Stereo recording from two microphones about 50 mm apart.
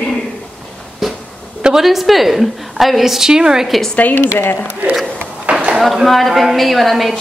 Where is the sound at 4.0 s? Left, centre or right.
Left.